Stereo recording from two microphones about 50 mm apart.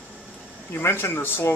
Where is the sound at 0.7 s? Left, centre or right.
Left.